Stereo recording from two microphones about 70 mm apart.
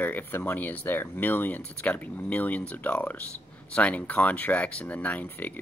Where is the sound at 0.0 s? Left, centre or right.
Left.